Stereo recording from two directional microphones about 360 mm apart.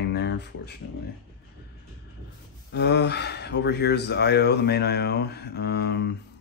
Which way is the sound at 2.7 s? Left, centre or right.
Left.